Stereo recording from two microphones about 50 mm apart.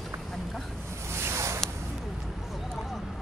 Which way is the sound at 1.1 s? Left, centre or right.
Right.